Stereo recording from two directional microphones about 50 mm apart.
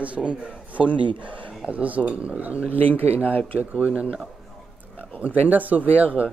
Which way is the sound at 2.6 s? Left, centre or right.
Left.